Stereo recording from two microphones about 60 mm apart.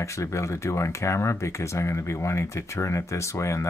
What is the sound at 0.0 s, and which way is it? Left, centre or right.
Speech, left.